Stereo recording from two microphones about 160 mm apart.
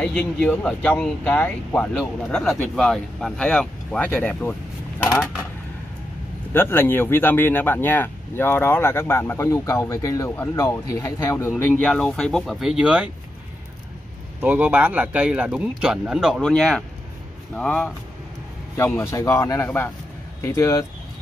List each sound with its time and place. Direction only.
0.0 s speech: 5° left (ahead or behind)
6.5 s speech: 15° left (ahead or behind)
11.8 s speech: 5° left (ahead or behind)
14.4 s speech: 10° right (ahead or behind); by 20.8 s 15° left (ahead or behind)